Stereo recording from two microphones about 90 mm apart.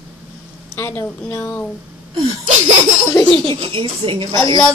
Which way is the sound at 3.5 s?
70° right (ahead or behind).